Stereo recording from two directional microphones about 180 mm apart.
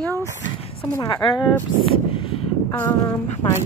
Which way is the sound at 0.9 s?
20° left (ahead or behind).